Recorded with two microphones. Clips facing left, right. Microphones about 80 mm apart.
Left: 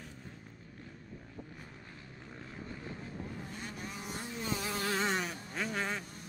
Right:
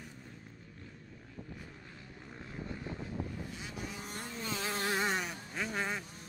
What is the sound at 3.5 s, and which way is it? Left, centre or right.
Vehicle, left.